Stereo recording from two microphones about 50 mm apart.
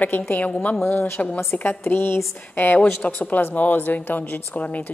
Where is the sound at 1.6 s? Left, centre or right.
Left.